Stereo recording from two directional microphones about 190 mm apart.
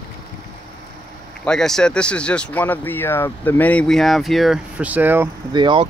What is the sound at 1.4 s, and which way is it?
Speech, 5° left (ahead or behind).